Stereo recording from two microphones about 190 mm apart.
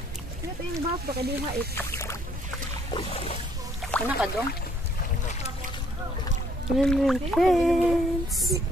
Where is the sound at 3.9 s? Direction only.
5° left (ahead or behind).